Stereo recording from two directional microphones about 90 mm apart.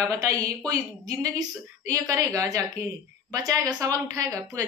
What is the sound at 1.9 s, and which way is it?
A woman's voice, 40° right (ahead or behind).